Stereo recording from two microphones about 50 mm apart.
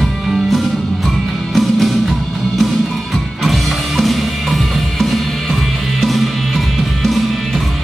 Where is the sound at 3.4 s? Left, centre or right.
Centre.